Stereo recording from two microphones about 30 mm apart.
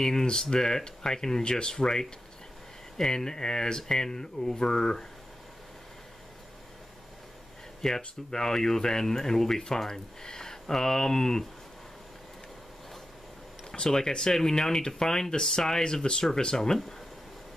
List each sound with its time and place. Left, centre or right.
0.0 s speech: centre
1.4 s speech: left
1.7 s speech: centre
3.1 s speech: left
7.8 s speech: centre
13.7 s speech: left